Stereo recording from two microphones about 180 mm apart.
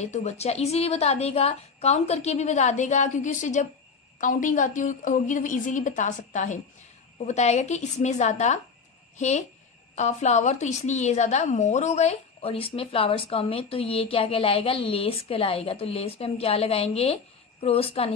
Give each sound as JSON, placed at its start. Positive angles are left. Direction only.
{"t": 0.0, "sound": "a woman's voice", "side_deg": 40}